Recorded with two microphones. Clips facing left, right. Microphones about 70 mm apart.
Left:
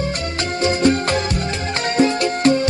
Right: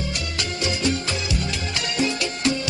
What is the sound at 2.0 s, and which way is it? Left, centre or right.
Music, left.